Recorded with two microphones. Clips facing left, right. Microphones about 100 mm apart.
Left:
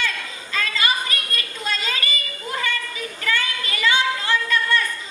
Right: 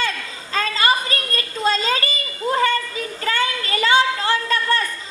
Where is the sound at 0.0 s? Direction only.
35° right (ahead or behind).